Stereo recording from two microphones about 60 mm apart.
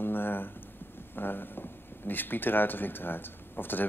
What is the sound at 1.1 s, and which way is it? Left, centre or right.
Speech, left.